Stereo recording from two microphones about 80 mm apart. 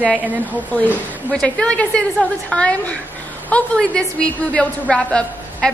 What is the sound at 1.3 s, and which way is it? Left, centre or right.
A woman's voice, centre.